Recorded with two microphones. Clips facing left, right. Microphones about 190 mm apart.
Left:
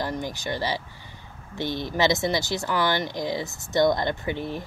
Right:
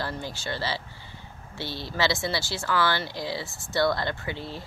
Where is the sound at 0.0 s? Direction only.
15° left (ahead or behind).